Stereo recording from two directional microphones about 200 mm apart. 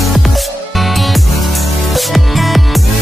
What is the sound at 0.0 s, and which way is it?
Music, centre (ahead or behind).